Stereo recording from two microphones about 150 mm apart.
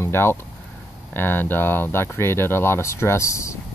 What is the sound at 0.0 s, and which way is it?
Speech, 15° left (ahead or behind).